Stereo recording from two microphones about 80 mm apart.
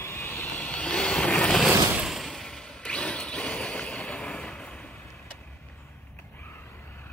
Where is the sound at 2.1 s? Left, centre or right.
Centre.